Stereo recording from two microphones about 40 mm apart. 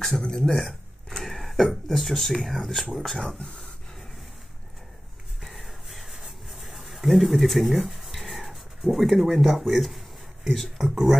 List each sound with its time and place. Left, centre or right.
0.3 s speech: centre
1.1 s speech: centre
3.3 s speech: left
5.4 s a sound: centre
7.8 s writing: centre
10.8 s speech: centre